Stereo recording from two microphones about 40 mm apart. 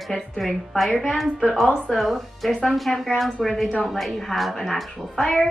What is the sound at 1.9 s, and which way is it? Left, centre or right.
Speech, centre.